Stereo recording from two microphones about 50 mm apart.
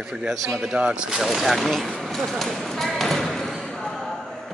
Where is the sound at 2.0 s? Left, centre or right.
Centre.